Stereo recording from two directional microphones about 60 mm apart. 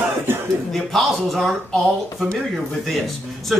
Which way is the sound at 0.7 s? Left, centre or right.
Centre.